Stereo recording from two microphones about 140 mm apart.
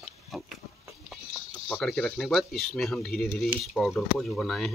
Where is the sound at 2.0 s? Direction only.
Centre (ahead or behind).